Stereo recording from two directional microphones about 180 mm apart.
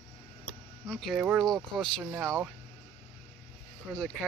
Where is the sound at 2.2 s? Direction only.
15° right (ahead or behind).